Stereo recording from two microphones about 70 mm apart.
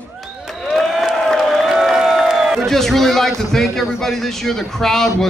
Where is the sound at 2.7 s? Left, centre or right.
Centre.